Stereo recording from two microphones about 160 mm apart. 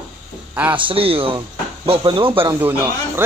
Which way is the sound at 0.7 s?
35° right (ahead or behind).